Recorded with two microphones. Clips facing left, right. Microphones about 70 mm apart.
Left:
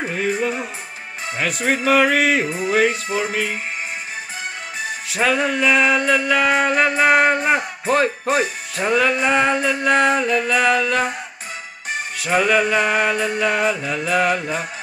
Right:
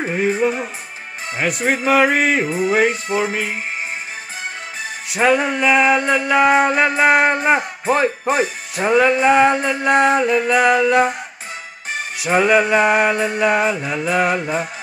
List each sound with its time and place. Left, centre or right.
0.1 s music: right
2.1 s music: centre
3.2 s music: centre
5.2 s speech: right
12.2 s music: centre